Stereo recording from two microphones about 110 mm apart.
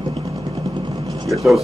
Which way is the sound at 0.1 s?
65° right (ahead or behind).